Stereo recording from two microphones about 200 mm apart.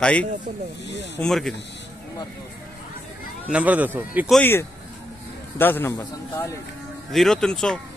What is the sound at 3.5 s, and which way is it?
Speech, 10° right (ahead or behind).